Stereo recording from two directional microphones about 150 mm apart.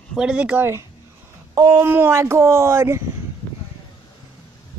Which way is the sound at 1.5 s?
25° right (ahead or behind).